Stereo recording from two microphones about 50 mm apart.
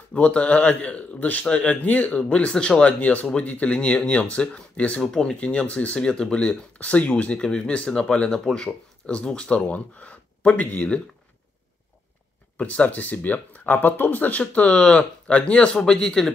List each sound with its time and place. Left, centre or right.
0.1 s a man's voice: left
2.9 s a man's voice: left
5.9 s a man's voice: centre
7.3 s a man's voice: centre
9.7 s speech: left
12.5 s speech: left
14.4 s a man's voice: left